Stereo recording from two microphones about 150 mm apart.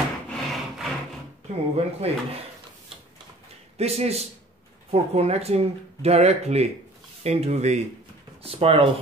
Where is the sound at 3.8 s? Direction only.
45° right (ahead or behind).